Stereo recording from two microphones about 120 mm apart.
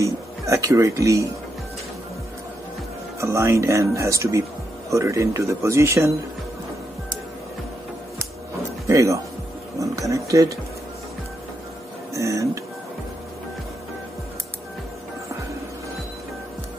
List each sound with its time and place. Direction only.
0.0 s speech: 25° right (ahead or behind)
3.2 s speech: 25° right (ahead or behind)
8.8 s speech: 25° right (ahead or behind)
12.1 s speech: 25° right (ahead or behind)